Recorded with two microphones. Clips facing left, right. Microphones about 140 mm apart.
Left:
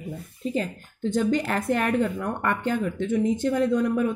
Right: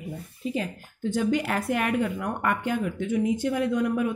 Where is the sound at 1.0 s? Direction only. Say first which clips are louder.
Left 2 dB; 10° right (ahead or behind).